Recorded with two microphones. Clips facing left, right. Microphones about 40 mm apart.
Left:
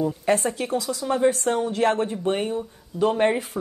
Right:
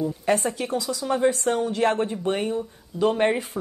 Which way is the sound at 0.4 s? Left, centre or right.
Centre.